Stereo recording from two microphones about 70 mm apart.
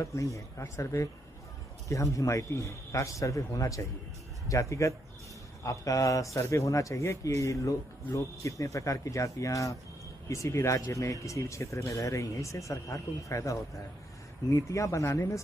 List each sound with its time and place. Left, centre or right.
0.0 s a man's voice: left